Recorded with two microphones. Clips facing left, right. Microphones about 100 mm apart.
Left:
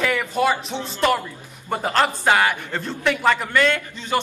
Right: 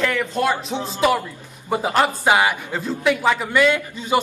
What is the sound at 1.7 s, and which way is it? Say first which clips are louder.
A man's voice: right 2 dB; 10° right (ahead or behind).